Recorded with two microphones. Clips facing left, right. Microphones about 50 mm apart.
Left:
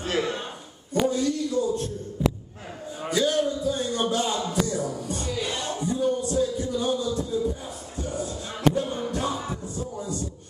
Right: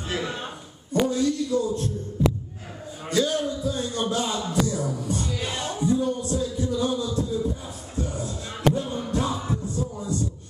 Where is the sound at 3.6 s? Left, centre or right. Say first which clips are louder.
Left 1 dB; left.